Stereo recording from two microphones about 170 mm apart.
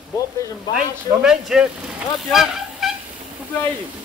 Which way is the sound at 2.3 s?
Centre (ahead or behind).